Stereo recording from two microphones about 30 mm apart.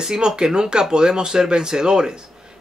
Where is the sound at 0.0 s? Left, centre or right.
Right.